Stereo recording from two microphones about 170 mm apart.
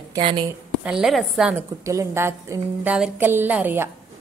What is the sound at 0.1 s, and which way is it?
Speech, 30° right (ahead or behind).